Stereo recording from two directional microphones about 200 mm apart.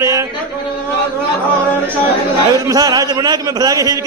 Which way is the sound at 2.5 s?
15° right (ahead or behind).